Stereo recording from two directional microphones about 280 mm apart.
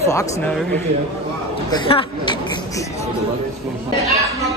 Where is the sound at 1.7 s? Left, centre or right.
Centre.